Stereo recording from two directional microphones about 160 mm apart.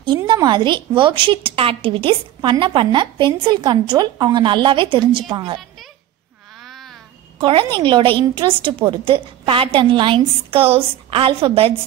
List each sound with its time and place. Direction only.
0.3 s a woman's voice: 30° right (ahead or behind)
7.3 s a woman's voice: 30° right (ahead or behind)